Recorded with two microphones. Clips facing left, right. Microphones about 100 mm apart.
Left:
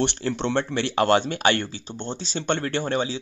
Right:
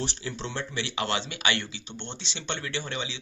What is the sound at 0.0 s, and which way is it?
Speech, 65° left (ahead or behind).